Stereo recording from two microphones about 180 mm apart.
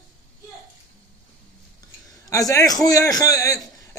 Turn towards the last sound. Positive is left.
turn(degrees=20)  # may be behind; listen again after turning